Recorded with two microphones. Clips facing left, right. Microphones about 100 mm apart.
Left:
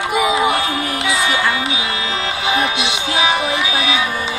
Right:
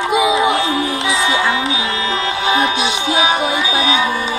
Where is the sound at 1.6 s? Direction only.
35° right (ahead or behind).